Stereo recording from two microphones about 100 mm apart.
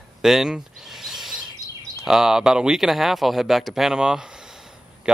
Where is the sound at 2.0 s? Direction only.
5° right (ahead or behind).